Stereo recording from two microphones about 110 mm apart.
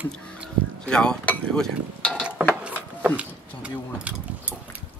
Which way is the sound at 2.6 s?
10° right (ahead or behind).